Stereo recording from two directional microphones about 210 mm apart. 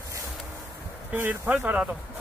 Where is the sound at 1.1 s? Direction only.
10° right (ahead or behind).